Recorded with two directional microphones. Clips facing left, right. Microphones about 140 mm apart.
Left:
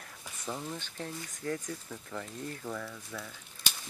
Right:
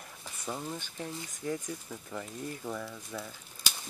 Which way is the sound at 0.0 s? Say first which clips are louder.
Right 1 dB; 10° right (ahead or behind).